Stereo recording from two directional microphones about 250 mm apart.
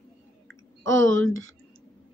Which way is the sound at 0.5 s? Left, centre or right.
Right.